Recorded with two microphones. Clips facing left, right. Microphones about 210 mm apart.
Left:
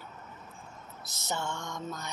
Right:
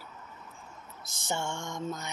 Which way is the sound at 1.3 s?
25° right (ahead or behind).